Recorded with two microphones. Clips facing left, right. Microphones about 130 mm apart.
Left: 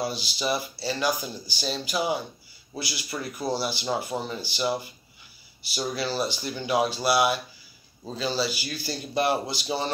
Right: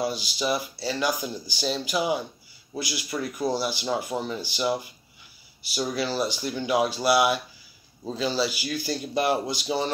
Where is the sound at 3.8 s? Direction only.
Centre (ahead or behind).